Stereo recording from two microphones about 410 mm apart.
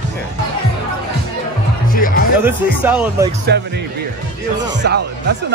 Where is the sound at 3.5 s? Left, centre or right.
Right.